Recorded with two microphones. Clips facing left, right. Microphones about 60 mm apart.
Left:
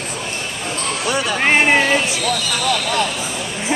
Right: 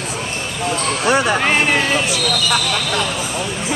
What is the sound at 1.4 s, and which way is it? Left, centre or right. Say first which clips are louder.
Speech: left 2 dB; left.